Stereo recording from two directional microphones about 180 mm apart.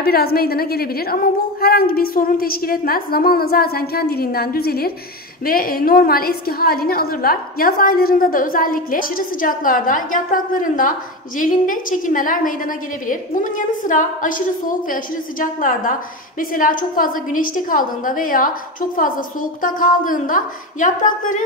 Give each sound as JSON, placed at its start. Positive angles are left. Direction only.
{"t": 0.0, "sound": "a woman's voice", "side_deg": 60}